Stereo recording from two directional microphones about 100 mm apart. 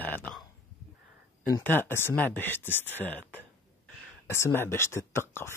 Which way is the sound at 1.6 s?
20° left (ahead or behind).